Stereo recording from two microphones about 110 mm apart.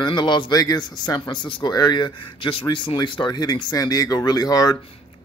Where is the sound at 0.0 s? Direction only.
45° left (ahead or behind).